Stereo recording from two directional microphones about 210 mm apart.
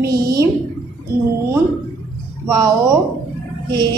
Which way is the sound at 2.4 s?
20° right (ahead or behind).